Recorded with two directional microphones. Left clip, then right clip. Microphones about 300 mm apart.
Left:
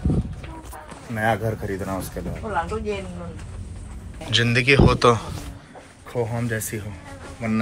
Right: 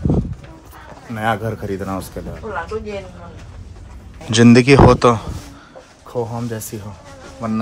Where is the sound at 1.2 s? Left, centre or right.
Centre.